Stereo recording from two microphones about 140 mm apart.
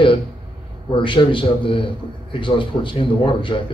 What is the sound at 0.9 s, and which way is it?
A man's voice, 35° left (ahead or behind).